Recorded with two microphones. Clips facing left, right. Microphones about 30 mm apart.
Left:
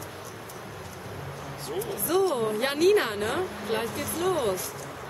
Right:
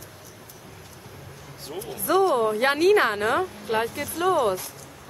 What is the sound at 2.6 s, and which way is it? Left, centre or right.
Speech, right.